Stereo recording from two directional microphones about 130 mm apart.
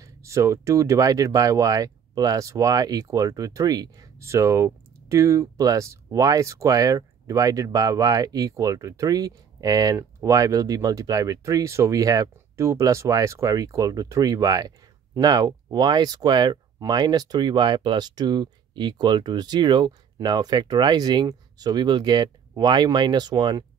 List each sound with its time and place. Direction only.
0.0 s speech: 25° right (ahead or behind)